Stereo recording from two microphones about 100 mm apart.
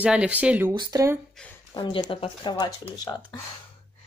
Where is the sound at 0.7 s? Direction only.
50° right (ahead or behind).